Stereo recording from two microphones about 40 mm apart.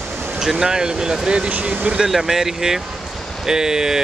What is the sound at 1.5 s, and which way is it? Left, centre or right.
Speech, right.